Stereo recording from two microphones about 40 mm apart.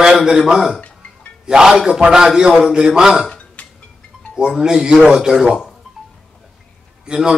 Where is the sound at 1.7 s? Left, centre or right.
Centre.